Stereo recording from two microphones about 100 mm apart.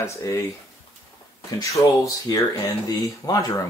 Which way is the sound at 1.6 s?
35° left (ahead or behind).